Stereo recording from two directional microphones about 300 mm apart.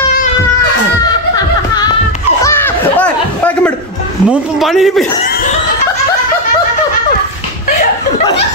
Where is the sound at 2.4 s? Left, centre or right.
Centre.